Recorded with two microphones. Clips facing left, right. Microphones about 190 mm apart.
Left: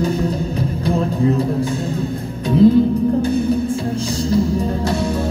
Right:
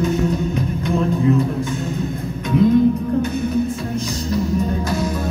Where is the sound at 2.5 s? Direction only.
35° left (ahead or behind).